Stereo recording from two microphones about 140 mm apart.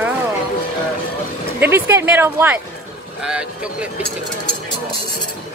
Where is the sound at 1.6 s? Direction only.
15° right (ahead or behind).